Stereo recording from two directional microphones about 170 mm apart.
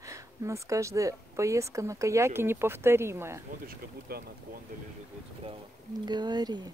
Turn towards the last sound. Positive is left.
turn(degrees=-25)  # may be behind; listen again after turning